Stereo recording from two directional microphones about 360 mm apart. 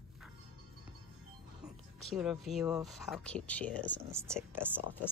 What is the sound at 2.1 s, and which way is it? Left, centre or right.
Speech, centre.